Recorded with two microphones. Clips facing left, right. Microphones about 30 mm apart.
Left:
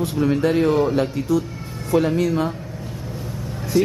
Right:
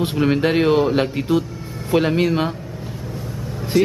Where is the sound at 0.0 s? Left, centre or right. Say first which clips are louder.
Right 1 dB; right.